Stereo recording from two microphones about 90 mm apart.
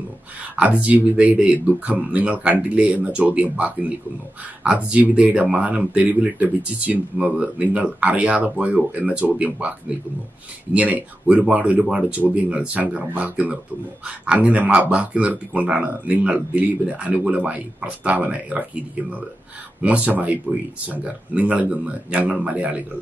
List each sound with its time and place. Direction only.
0.6 s speech: 15° right (ahead or behind)
4.6 s speech: 10° right (ahead or behind)
19.8 s speech: 15° right (ahead or behind)